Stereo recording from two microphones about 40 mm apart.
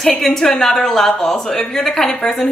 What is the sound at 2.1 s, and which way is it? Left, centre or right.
Speech, left.